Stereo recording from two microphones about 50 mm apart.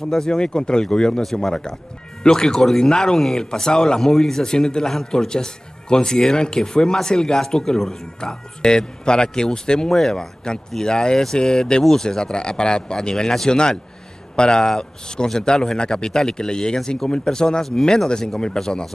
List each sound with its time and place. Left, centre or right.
0.1 s speech: centre